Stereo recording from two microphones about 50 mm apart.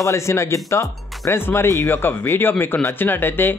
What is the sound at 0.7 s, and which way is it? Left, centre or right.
Speech, left.